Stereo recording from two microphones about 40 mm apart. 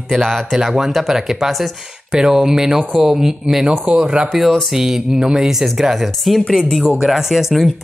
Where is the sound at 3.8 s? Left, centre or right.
Right.